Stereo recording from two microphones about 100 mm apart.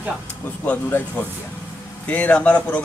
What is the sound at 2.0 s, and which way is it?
Speech, 15° left (ahead or behind).